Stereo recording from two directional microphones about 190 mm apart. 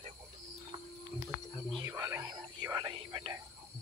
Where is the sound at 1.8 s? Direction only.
15° right (ahead or behind).